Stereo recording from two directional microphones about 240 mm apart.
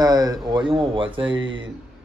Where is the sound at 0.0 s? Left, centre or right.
Centre.